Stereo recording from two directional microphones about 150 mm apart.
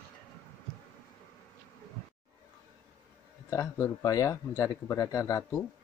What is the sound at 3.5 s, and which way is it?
Speech, 20° left (ahead or behind).